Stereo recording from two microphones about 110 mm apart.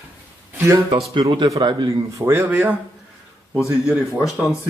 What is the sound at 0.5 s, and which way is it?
Speech, 25° right (ahead or behind).